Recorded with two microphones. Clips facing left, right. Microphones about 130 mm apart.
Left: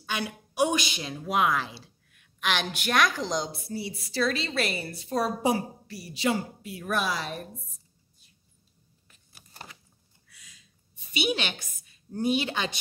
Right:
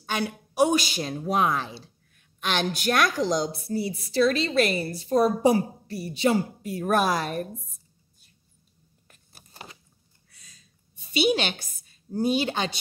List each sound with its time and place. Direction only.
0.1 s a woman's voice: 35° right (ahead or behind)
9.0 s biting: 50° right (ahead or behind)
9.5 s biting: 20° right (ahead or behind)
10.4 s a sound: 40° right (ahead or behind)